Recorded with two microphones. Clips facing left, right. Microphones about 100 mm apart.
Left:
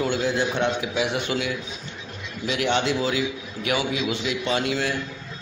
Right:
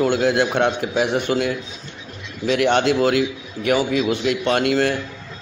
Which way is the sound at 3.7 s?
45° right (ahead or behind).